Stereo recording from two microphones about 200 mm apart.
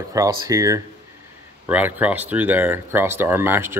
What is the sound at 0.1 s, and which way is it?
Speech, 15° right (ahead or behind).